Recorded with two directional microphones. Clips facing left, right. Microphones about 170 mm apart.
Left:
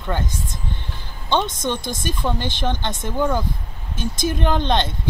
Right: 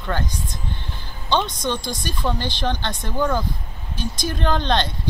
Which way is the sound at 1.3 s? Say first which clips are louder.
Left 1 dB; 20° left (ahead or behind).